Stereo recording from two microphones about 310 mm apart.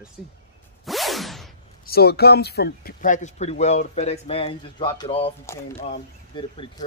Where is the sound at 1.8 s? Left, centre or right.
Left.